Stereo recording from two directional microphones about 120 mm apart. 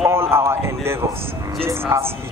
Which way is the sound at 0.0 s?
20° right (ahead or behind).